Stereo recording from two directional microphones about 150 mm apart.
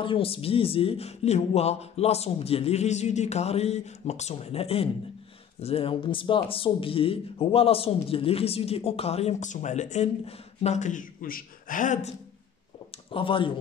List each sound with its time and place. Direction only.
0.0 s speech: 40° left (ahead or behind); by 12.1 s 55° left (ahead or behind)
13.1 s speech: 35° left (ahead or behind)